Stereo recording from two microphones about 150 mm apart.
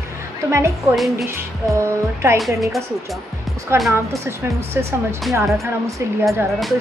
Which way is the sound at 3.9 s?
15° right (ahead or behind).